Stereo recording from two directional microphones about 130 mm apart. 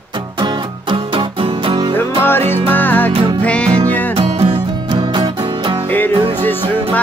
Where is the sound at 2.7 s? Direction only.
15° left (ahead or behind).